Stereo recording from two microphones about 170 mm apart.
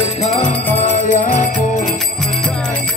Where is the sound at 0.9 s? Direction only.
50° left (ahead or behind).